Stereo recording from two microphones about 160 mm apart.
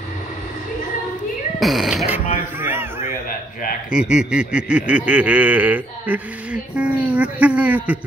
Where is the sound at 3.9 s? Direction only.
5° right (ahead or behind).